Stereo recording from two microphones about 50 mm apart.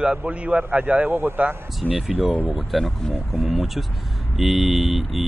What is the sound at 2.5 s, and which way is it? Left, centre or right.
Speech, centre.